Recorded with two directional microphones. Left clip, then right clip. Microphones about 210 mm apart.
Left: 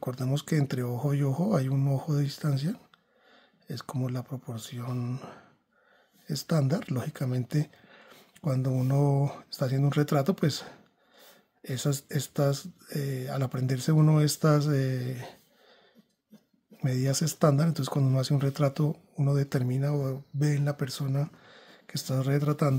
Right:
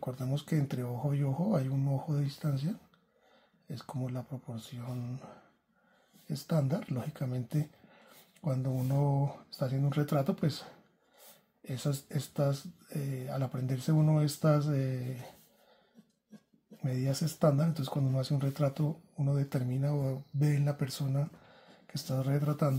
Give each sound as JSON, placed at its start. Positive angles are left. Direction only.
{"t": 0.0, "sound": "speech", "side_deg": 40}
{"t": 16.8, "sound": "speech", "side_deg": 40}